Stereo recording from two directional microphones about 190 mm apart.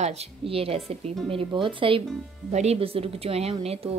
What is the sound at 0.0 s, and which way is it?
A woman's voice, 30° right (ahead or behind).